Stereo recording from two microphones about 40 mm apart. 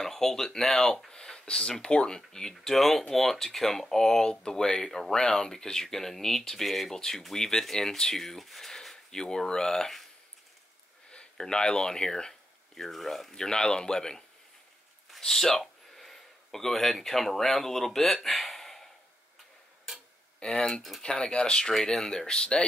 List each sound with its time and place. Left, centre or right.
0.0 s speech: centre
7.0 s speech: centre
11.3 s speech: centre
13.3 s speech: centre
20.3 s speech: centre